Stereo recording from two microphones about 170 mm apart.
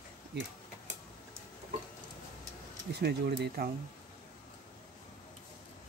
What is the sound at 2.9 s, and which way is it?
Speech, 75° right (ahead or behind).